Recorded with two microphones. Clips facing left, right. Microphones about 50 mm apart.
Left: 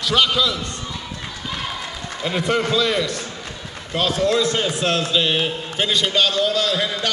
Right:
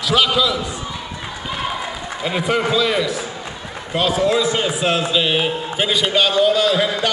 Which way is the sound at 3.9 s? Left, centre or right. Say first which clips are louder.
Right 2 dB; centre.